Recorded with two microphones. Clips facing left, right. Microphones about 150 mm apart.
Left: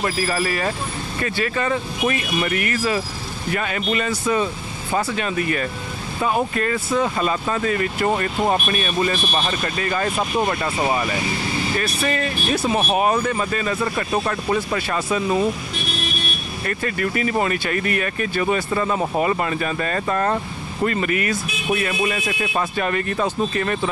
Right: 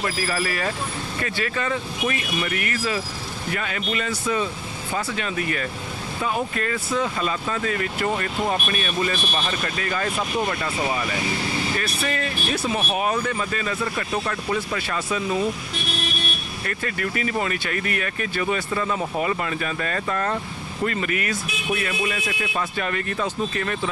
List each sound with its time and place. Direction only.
0.0 s speech: 30° left (ahead or behind)
16.6 s speech: 35° left (ahead or behind)